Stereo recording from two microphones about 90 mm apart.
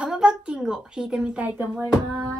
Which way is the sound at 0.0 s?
10° right (ahead or behind).